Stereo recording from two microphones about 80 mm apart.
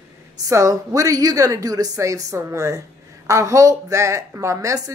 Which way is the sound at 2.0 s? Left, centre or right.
Right.